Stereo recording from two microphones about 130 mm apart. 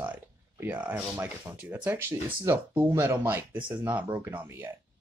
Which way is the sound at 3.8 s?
15° right (ahead or behind).